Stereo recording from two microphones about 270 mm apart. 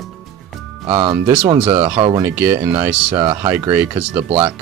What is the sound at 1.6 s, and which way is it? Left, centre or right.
Speech, centre.